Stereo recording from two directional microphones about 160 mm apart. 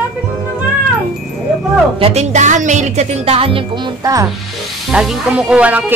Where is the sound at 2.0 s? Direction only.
45° right (ahead or behind); by 4.2 s 25° right (ahead or behind).